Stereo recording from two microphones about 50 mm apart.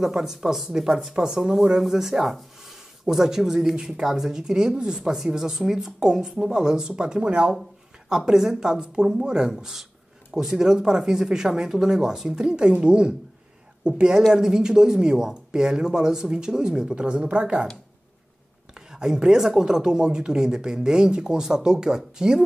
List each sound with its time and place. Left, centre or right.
0.1 s speech: centre
8.1 s speech: centre
18.8 s speech: centre